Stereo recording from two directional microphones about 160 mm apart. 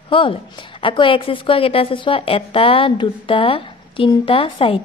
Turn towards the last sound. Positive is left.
turn(degrees=35)  # may be behind; listen again after turning